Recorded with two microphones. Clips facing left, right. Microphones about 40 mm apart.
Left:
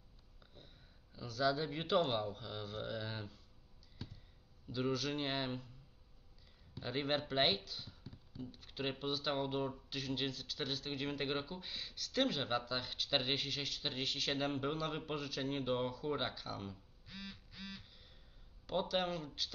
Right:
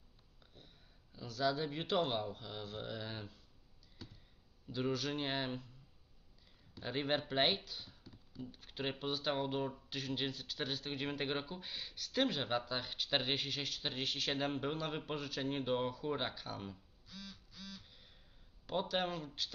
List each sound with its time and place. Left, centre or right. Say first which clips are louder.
0.5 s sniff: left 1 dB; centre
1.1 s speech: left 1 dB; centre
4.0 s a sound: left 2 dB; centre
4.6 s speech: even; centre
6.7 s speech: right 1 dB; centre
8.0 s a sound: left 3 dB; centre
8.4 s speech: even; centre
17.1 s duck: left 2 dB; centre
18.7 s speech: even; centre